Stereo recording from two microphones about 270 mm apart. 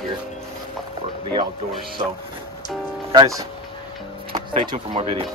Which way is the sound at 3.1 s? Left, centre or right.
Centre.